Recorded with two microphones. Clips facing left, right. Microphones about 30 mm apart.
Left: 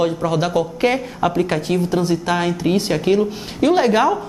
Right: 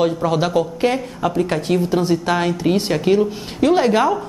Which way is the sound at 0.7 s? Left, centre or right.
Centre.